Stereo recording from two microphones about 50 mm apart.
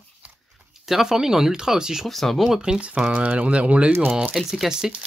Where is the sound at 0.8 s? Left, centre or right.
Centre.